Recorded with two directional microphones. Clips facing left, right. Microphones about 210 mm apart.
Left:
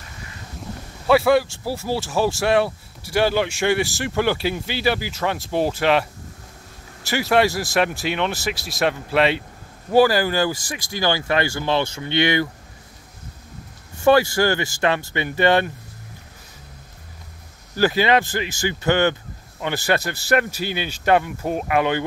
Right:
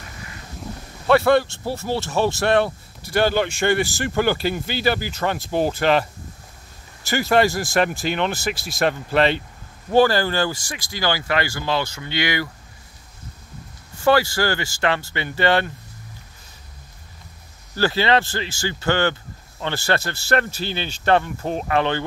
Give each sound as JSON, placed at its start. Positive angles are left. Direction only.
{"t": 0.6, "sound": "speech", "side_deg": 5}
{"t": 7.1, "sound": "speech", "side_deg": 5}
{"t": 14.0, "sound": "speech", "side_deg": 20}
{"t": 17.7, "sound": "a man's voice", "side_deg": 15}